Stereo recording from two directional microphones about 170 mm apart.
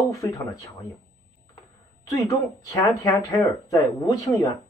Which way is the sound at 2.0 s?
20° left (ahead or behind).